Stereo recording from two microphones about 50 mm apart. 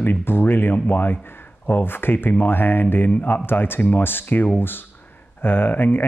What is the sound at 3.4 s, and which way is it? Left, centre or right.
Speech, left.